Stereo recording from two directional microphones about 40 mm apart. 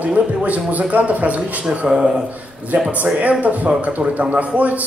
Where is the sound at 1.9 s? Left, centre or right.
Right.